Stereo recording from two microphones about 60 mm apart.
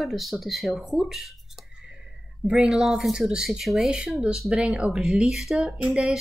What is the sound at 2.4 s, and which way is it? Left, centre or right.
Speech, centre.